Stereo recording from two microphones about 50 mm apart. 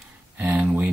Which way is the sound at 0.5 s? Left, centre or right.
Right.